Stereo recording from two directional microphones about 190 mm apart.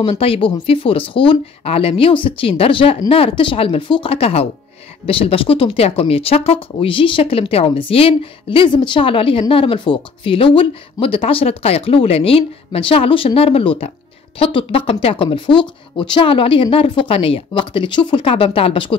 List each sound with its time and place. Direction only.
0.0 s speech: 30° left (ahead or behind)